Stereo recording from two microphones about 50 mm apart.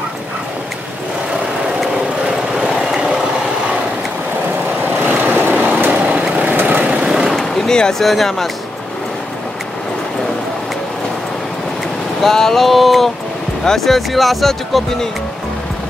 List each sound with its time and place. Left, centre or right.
2.5 s vehicle: centre
4.8 s vehicle: right
5.9 s vehicle: centre
6.5 s vehicle: right
6.8 s vehicle: right
7.1 s vehicle: centre
7.5 s a sound: centre
8.0 s speech: centre
12.2 s speech: centre